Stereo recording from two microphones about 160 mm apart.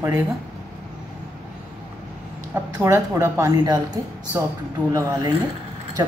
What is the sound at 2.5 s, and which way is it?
A woman's voice, 15° right (ahead or behind).